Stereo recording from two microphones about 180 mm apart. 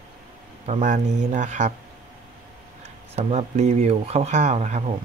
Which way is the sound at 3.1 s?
40° right (ahead or behind).